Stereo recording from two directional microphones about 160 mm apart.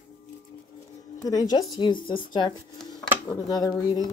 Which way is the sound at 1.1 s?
25° left (ahead or behind).